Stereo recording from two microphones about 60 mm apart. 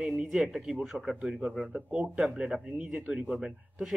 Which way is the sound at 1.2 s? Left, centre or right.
Centre.